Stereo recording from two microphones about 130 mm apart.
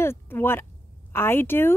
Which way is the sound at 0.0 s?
20° left (ahead or behind).